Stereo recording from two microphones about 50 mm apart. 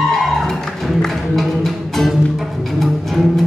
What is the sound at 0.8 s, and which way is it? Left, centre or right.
Music, centre.